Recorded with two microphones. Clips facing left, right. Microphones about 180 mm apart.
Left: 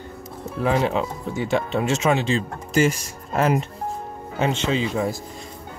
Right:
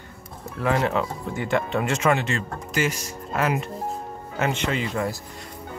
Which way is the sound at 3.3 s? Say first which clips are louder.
Left 4 dB; 40° left (ahead or behind).